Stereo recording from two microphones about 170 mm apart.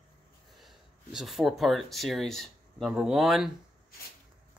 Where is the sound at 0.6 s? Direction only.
Centre (ahead or behind).